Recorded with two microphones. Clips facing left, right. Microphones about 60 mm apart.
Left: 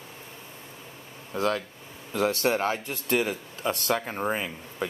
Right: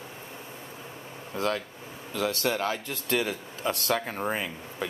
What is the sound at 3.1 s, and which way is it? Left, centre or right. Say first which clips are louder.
Speech: left 2 dB; centre.